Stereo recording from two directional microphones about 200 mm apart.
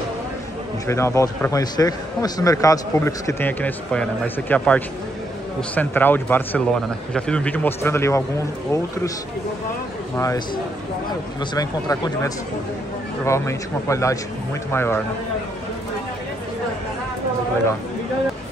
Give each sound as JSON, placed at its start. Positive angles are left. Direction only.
{"t": 0.8, "sound": "a man's voice", "side_deg": 15}
{"t": 10.1, "sound": "a man's voice", "side_deg": 15}